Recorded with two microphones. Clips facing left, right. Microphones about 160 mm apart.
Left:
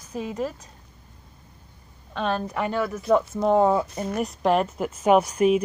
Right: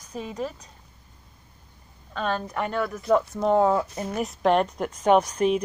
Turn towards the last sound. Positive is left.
turn(degrees=10)  # may be behind; listen again after turning